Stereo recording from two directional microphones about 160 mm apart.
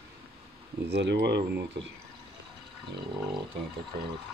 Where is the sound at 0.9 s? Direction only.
90° right.